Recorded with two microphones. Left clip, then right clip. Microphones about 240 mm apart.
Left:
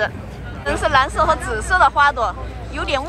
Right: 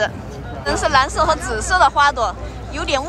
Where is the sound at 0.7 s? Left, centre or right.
Centre.